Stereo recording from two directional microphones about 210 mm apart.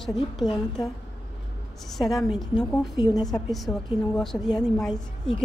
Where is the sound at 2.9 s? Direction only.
20° left (ahead or behind).